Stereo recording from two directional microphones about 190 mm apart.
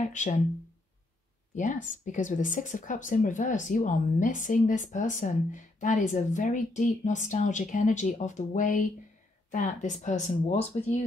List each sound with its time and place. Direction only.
0.0 s speech: 40° left (ahead or behind)
1.5 s speech: 40° left (ahead or behind)